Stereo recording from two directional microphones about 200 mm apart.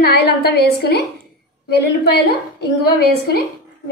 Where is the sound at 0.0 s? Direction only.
50° left (ahead or behind).